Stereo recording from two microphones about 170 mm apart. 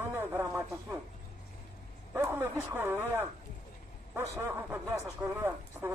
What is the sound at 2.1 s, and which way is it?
Speech, 15° right (ahead or behind).